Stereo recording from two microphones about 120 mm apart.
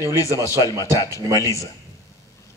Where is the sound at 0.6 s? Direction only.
30° left (ahead or behind).